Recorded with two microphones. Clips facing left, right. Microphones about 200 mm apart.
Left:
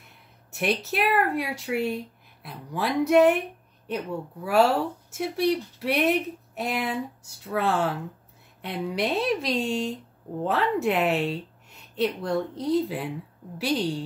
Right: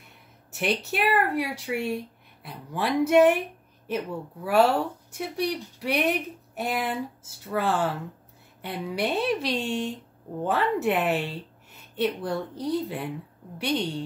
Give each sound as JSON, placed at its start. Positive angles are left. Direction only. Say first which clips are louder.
{"t": 0.6, "sound": "speech", "louder": "left 1 dB", "side_deg": 0}